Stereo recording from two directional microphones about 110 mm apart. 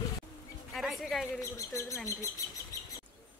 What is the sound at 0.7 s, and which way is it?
Speech, centre (ahead or behind).